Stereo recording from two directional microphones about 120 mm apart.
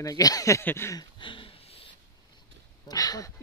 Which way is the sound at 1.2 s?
45° left (ahead or behind).